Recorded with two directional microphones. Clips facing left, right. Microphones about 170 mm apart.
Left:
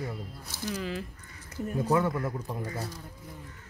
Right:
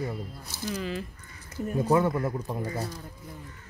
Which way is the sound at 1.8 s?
25° right (ahead or behind).